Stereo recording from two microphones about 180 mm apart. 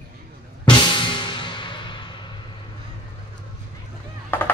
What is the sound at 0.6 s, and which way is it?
Music, 25° left (ahead or behind).